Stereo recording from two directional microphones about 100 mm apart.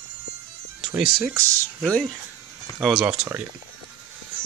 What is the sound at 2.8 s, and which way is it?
Speech, 5° right (ahead or behind).